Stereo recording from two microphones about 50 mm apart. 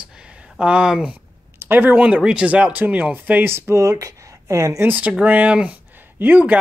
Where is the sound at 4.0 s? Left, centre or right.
Right.